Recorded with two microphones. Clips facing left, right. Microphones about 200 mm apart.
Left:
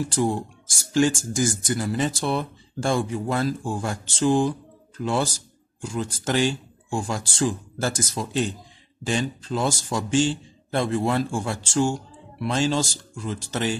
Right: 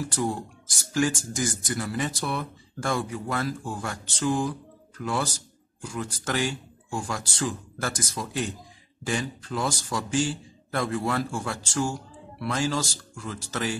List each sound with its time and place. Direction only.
0.0 s speech: 25° left (ahead or behind)